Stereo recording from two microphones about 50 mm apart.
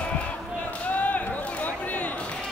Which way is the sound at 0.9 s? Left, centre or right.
Left.